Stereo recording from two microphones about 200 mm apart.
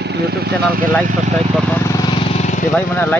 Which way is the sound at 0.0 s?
55° right (ahead or behind).